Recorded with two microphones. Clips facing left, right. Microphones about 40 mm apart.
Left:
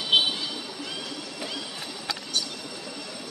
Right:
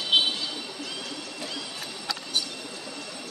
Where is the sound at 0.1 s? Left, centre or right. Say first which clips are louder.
Left 1 dB; centre.